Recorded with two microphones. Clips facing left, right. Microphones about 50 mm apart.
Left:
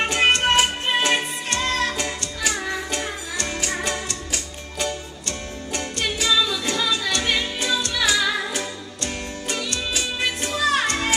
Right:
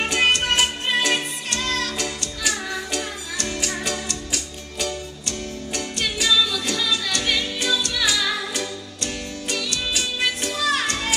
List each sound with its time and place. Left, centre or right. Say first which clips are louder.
0.1 s music: left 2 dB; left